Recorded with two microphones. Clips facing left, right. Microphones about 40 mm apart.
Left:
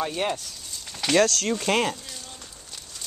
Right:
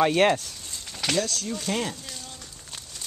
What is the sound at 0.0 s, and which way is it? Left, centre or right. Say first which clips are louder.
Speech: right 7 dB; right.